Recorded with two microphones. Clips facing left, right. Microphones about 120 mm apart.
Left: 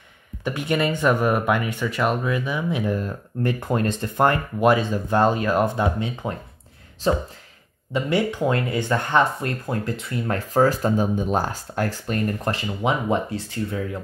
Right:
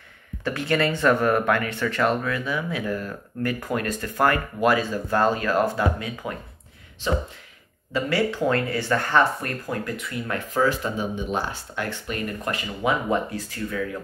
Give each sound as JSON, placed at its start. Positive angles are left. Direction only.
{"t": 0.4, "sound": "speech", "side_deg": 15}
{"t": 7.9, "sound": "speech", "side_deg": 20}